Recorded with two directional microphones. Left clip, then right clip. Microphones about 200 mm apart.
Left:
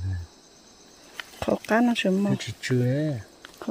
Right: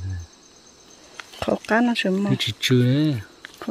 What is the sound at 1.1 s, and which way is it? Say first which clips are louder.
Speech: right 2 dB; centre (ahead or behind).